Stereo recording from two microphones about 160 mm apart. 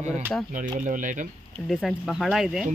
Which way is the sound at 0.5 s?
55° right (ahead or behind).